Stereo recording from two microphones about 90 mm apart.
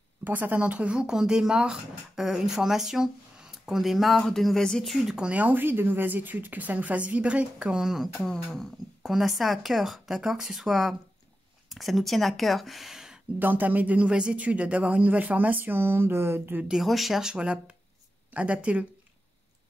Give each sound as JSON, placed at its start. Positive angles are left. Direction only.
{"t": 0.2, "sound": "speech", "side_deg": -20}
{"t": 13.4, "sound": "speech", "side_deg": -20}
{"t": 16.6, "sound": "speech", "side_deg": -5}